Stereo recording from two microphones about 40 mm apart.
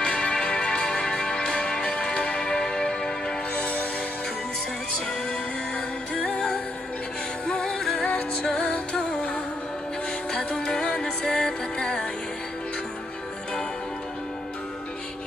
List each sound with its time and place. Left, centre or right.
0.0 s music: left
3.5 s music: left
6.1 s music: left
7.6 s music: centre
8.0 s music: left
10.6 s music: centre